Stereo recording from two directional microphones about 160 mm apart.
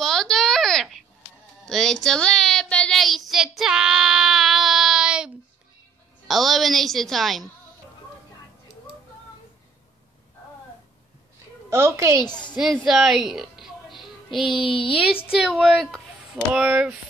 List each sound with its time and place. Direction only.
0.0 s babbling: 5° left (ahead or behind)
1.7 s child singing: 5° left (ahead or behind)
6.2 s a woman's voice: centre (ahead or behind)
11.7 s a woman's voice: 15° right (ahead or behind)
12.2 s a woman's voice: 30° left (ahead or behind)
12.5 s a woman's voice: centre (ahead or behind)
14.6 s speech: 35° left (ahead or behind)
15.2 s speech: 5° right (ahead or behind)